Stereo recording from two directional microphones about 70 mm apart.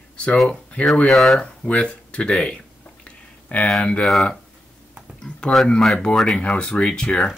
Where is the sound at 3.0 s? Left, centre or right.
Centre.